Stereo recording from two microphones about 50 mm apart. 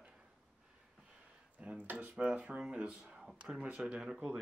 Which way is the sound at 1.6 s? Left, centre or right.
Right.